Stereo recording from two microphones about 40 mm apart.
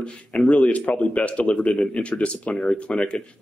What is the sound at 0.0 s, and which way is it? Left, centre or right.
Speech, left.